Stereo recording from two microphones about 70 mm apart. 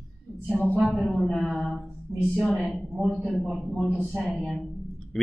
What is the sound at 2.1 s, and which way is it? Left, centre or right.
Speech, centre.